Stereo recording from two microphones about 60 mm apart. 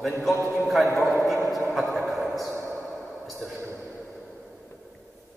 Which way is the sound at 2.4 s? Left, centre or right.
Right.